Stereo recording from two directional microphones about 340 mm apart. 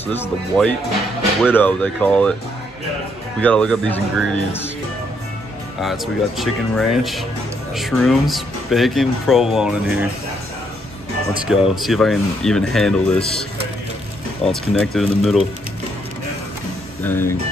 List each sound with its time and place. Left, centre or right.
0.0 s speech: centre
3.3 s speech: centre
5.8 s speech: centre
11.4 s speech: centre
14.4 s speech: centre
17.0 s speech: centre